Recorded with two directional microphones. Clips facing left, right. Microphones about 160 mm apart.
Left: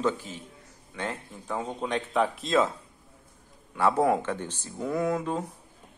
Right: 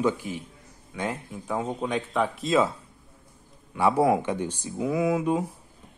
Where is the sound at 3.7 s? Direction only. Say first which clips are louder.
Right 2 dB; 10° right (ahead or behind).